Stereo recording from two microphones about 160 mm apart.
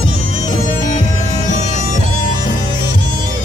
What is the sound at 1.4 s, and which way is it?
Music, 50° left (ahead or behind).